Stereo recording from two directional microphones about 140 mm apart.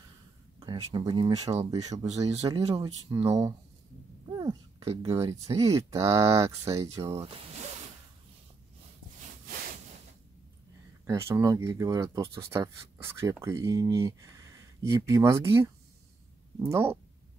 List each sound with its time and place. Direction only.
0.6 s speech: 35° right (ahead or behind)
4.3 s a sound: 30° right (ahead or behind)
4.7 s speech: 45° right (ahead or behind)
5.1 s speech: 20° right (ahead or behind)
11.1 s speech: 20° right (ahead or behind)